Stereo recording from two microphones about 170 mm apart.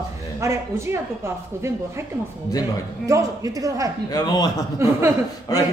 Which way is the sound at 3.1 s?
20° right (ahead or behind).